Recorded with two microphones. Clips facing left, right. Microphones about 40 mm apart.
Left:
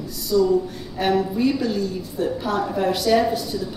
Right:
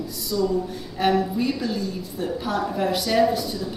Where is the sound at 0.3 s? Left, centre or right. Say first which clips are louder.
Left 5 dB; centre.